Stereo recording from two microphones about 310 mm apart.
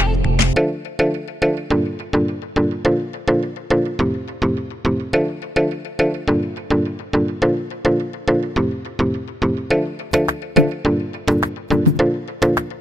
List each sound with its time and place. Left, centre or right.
0.6 s music: centre